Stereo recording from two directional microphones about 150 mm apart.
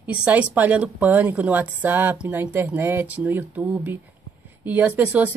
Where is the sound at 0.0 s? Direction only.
10° right (ahead or behind).